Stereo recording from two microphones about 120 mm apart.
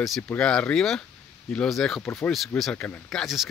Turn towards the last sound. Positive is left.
turn(degrees=0)  # may be behind; listen again after turning